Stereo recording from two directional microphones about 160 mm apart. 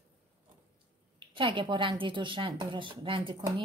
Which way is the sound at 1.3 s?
30° right (ahead or behind).